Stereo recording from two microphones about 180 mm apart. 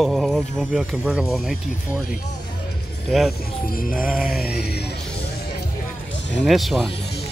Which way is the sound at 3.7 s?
50° left (ahead or behind).